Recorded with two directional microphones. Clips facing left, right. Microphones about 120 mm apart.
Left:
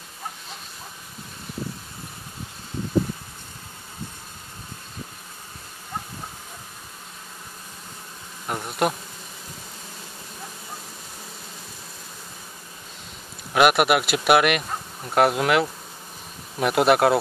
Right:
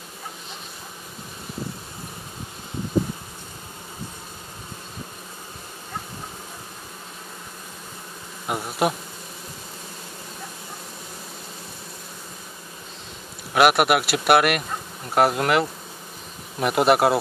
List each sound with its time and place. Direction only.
8.5 s speech: 5° right (ahead or behind)
13.5 s speech: centre (ahead or behind)